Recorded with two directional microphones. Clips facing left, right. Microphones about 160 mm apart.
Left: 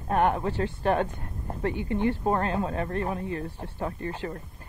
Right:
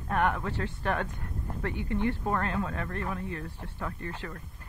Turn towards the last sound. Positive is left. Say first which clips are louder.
# left 5 dB
turn(degrees=25)  # may be behind; listen again after turning